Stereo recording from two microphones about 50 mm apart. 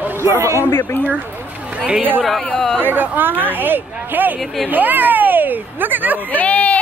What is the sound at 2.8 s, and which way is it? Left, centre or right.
Speech, right.